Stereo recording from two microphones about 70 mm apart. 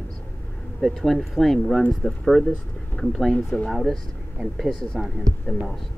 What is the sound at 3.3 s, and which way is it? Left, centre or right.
Speech, centre.